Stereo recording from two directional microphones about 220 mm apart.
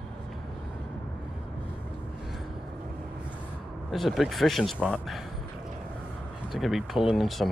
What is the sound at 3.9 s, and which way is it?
Speech, centre (ahead or behind).